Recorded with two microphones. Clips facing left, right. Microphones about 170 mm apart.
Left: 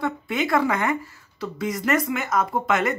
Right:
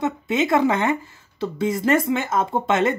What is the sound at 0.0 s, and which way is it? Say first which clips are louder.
Speech: right 3 dB; 25° right (ahead or behind).